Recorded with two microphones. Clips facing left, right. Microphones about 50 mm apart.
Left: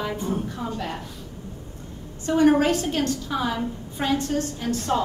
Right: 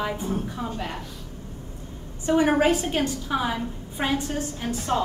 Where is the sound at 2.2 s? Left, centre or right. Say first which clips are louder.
Left 1 dB; centre.